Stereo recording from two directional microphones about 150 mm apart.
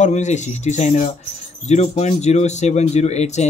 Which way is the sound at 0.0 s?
50° left (ahead or behind).